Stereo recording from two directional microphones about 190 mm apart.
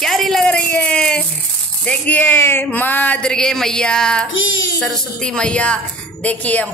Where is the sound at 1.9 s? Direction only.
10° left (ahead or behind).